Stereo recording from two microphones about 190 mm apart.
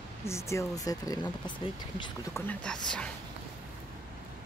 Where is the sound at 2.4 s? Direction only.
5° left (ahead or behind).